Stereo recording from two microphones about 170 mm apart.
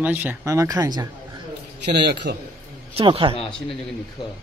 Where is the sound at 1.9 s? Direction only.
85° right.